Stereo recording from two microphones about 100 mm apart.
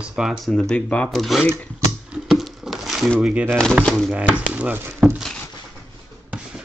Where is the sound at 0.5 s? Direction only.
10° left (ahead or behind).